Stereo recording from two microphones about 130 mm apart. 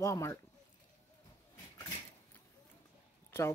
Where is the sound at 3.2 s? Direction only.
20° left (ahead or behind).